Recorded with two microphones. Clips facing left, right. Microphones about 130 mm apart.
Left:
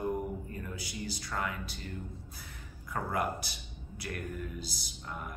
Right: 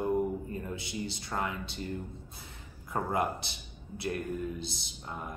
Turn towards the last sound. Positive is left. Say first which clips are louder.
# right 1 dB
turn(degrees=-25)  # may be behind; listen again after turning